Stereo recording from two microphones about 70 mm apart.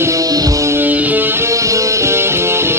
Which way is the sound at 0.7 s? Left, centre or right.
Right.